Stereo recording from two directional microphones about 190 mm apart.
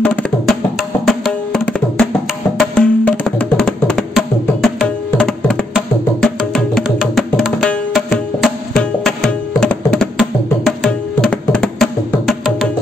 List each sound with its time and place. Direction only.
0.0 s music: 5° left (ahead or behind)
6.2 s tabla: centre (ahead or behind)